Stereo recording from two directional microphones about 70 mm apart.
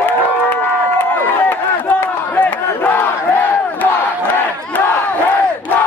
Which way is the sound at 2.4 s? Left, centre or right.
Left.